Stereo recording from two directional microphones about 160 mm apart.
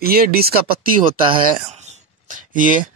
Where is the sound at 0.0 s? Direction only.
70° right (ahead or behind).